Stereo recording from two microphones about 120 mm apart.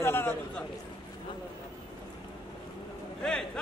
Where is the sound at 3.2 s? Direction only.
5° left (ahead or behind).